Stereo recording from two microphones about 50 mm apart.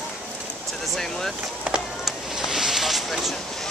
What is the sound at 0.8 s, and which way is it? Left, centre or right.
Speech, centre.